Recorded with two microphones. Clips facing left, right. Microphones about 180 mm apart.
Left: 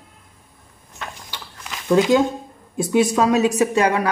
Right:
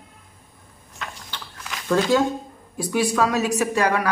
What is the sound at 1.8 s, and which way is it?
Speech, 15° left (ahead or behind).